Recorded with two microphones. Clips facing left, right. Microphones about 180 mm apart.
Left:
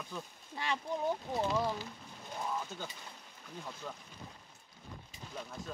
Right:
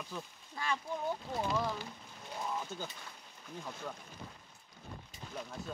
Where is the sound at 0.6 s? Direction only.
20° left (ahead or behind).